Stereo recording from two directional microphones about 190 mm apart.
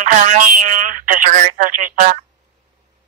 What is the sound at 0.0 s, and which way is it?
Speech, 40° right (ahead or behind).